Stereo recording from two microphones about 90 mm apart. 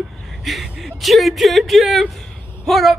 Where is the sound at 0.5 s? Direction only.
Centre (ahead or behind).